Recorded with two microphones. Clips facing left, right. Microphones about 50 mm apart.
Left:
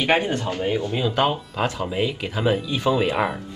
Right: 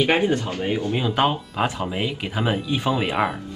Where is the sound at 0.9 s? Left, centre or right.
Centre.